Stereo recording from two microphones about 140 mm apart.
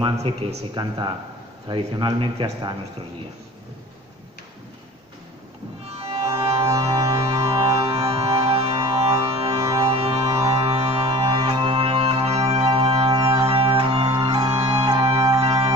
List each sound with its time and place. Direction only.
0.2 s speech: 50° right (ahead or behind)
0.7 s speech: 30° right (ahead or behind)
5.9 s music: 45° right (ahead or behind)
6.6 s music: 30° right (ahead or behind)
9.6 s music: 20° right (ahead or behind)
9.8 s music: 45° right (ahead or behind)